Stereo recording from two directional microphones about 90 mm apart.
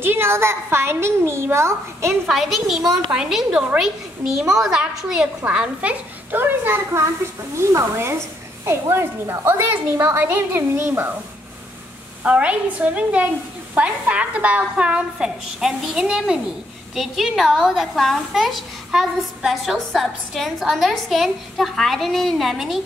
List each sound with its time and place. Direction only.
0.0 s a woman's voice: 25° right (ahead or behind)
2.2 s a woman's voice: centre (ahead or behind); by 11.1 s 30° right (ahead or behind)
12.2 s a woman's voice: 15° right (ahead or behind)